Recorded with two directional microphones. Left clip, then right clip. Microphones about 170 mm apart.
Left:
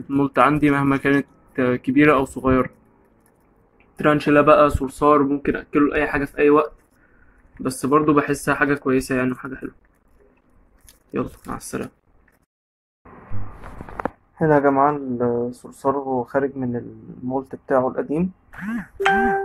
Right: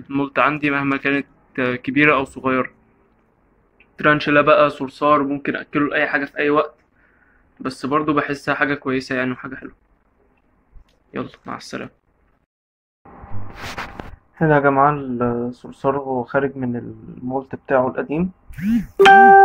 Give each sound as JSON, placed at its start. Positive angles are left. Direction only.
{"t": 0.1, "sound": "speech", "side_deg": 25}
{"t": 3.7, "sound": "speech", "side_deg": 15}
{"t": 11.1, "sound": "speech", "side_deg": 15}
{"t": 14.4, "sound": "speech", "side_deg": -10}